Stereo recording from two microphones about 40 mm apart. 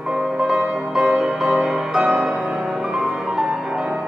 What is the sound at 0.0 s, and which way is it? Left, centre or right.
Music, right.